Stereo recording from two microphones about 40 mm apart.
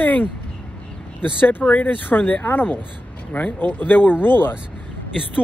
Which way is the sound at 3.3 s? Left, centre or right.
Left.